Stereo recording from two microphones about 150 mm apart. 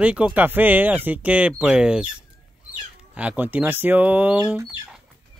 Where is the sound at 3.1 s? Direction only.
10° right (ahead or behind).